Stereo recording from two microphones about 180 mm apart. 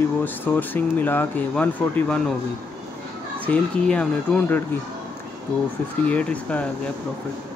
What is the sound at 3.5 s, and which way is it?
Speech, 5° left (ahead or behind).